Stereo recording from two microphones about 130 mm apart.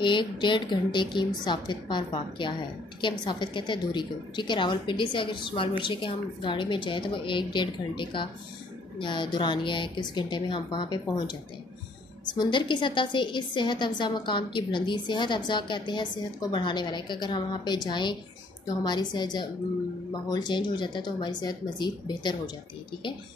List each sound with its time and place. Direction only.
0.0 s a woman's voice: 35° left (ahead or behind)
12.4 s a woman's voice: 35° left (ahead or behind)